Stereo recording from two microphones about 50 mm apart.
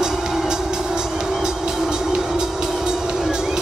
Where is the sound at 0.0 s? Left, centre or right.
Centre.